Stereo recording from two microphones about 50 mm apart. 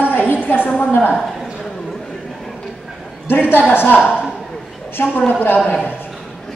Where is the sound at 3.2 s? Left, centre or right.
Left.